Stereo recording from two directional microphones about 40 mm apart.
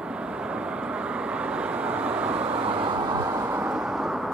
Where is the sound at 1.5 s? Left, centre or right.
Right.